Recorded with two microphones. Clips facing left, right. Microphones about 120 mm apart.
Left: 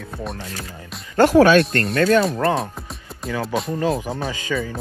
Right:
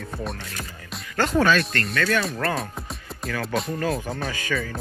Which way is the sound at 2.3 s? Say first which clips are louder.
Left 6 dB; 25° left (ahead or behind).